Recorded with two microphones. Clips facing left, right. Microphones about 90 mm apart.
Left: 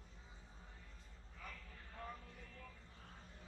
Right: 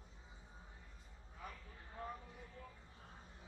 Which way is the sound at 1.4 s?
20° right (ahead or behind).